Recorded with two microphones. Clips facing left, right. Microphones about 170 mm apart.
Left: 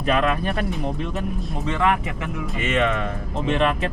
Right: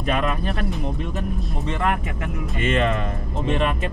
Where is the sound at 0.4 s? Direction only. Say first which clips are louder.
Left 1 dB; centre (ahead or behind).